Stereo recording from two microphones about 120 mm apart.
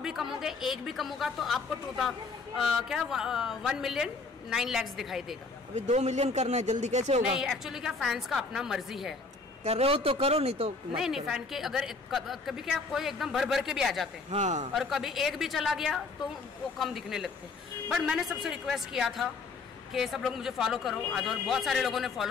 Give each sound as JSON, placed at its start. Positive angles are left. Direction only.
{"t": 0.0, "sound": "a woman's voice", "side_deg": -5}
{"t": 5.8, "sound": "speech", "side_deg": -70}
{"t": 7.3, "sound": "a woman's voice", "side_deg": -5}
{"t": 9.7, "sound": "speech", "side_deg": -55}
{"t": 11.0, "sound": "a woman's voice", "side_deg": -5}
{"t": 14.3, "sound": "speech", "side_deg": -85}
{"t": 14.7, "sound": "a woman's voice", "side_deg": 0}